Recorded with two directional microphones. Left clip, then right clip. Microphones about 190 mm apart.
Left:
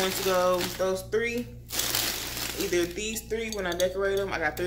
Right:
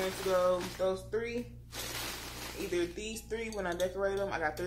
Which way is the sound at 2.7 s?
5° left (ahead or behind).